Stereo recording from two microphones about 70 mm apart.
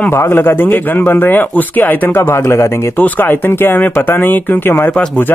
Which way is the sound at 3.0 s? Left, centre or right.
Left.